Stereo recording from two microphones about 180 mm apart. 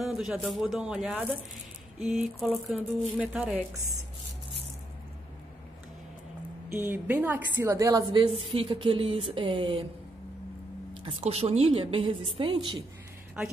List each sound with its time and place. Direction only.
0.0 s a woman's voice: centre (ahead or behind)
6.7 s a woman's voice: 10° right (ahead or behind); by 9.8 s 30° right (ahead or behind)
11.1 s a woman's voice: 30° right (ahead or behind)